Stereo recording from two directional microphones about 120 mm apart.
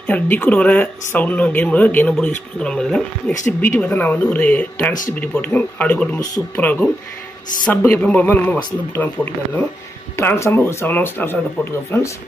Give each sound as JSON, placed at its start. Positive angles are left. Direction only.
{"t": 0.0, "sound": "speech", "side_deg": 15}
{"t": 3.4, "sound": "speech", "side_deg": 25}
{"t": 3.8, "sound": "speech", "side_deg": 10}